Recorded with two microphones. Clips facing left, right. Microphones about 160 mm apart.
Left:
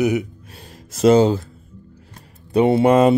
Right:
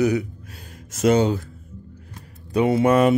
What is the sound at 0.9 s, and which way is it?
Speech, 30° left (ahead or behind).